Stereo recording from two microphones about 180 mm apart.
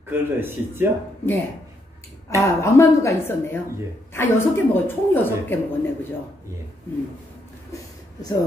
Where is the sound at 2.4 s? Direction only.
15° left (ahead or behind).